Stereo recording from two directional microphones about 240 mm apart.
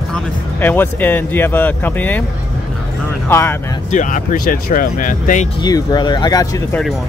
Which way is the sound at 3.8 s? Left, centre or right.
Left.